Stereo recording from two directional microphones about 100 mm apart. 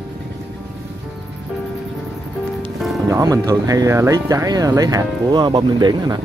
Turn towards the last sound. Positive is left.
turn(degrees=-45)  # may be behind; listen again after turning